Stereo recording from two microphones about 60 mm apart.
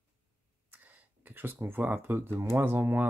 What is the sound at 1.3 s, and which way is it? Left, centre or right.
Speech, right.